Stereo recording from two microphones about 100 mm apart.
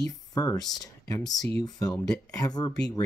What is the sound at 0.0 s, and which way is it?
Speech, 40° left (ahead or behind).